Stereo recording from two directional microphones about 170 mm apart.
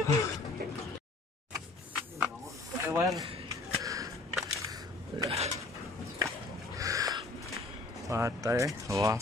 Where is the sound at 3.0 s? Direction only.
20° right (ahead or behind).